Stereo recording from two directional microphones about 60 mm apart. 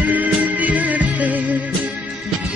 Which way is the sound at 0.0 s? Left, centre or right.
Right.